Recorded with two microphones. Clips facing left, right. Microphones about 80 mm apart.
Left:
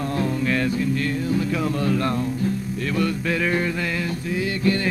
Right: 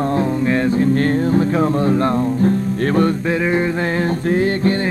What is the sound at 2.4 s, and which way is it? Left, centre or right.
Music, right.